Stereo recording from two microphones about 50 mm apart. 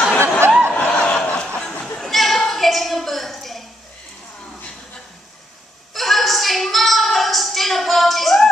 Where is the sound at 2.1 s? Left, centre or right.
Centre.